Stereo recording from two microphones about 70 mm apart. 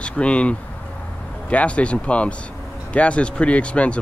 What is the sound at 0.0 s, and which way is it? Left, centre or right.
Speech, centre.